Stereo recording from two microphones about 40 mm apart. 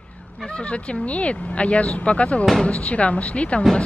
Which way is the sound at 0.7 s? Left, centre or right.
Left.